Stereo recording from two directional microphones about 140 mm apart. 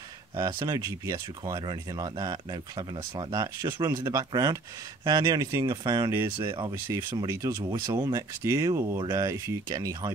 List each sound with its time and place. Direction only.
0.4 s speech: 25° right (ahead or behind)